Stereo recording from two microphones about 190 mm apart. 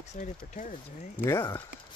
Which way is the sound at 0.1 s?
40° left (ahead or behind).